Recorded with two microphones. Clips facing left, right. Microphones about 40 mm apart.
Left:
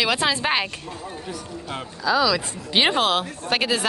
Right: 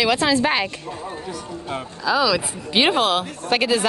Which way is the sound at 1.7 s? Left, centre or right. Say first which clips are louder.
Right 1 dB; centre.